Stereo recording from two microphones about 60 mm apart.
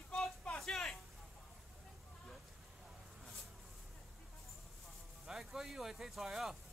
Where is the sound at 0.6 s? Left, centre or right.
Centre.